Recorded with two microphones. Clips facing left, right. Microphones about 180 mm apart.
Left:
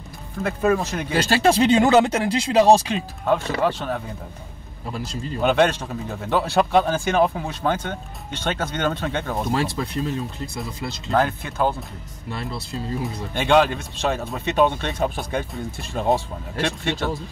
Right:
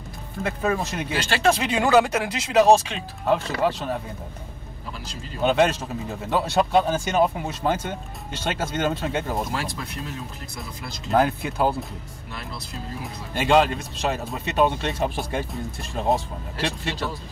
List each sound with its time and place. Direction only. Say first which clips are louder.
0.4 s speech: left 4 dB; centre (ahead or behind)
1.1 s speech: left 3 dB; 40° left (ahead or behind)
1.7 s speech: left 3 dB; 25° left (ahead or behind)
3.3 s speech: left 1 dB; centre (ahead or behind)
5.4 s speech: left 1 dB; centre (ahead or behind)
9.5 s speech: left 6 dB; 35° left (ahead or behind)
11.1 s speech: right 1 dB; 10° right (ahead or behind)
13.0 s speech: left 2 dB; 5° right (ahead or behind)